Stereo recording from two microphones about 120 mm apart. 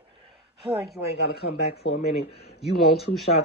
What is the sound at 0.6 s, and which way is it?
Speech, 5° right (ahead or behind).